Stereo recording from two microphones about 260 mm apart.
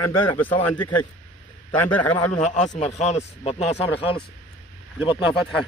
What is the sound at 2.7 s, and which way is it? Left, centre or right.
Speech, left.